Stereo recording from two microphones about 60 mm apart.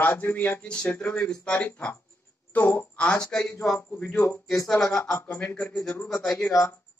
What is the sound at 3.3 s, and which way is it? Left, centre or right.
Speech, centre.